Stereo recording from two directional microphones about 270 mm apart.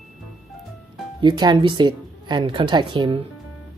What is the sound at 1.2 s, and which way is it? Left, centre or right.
Speech, centre.